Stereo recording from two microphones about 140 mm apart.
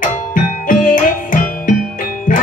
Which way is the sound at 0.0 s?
70° left (ahead or behind).